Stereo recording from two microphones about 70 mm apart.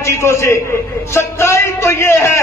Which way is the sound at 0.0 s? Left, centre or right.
Left.